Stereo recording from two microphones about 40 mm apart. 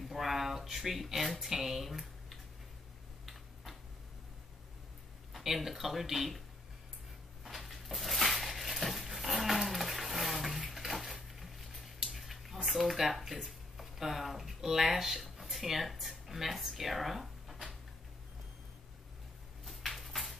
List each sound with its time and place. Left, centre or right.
0.1 s a sound: centre
1.4 s typing: centre
5.3 s speech: centre
7.4 s dog: centre
12.6 s speech: centre
19.6 s a sound: centre